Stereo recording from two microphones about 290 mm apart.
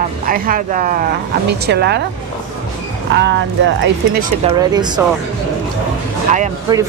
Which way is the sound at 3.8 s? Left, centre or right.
Right.